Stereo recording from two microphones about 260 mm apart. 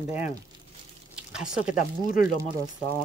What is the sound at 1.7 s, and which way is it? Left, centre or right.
Speech, left.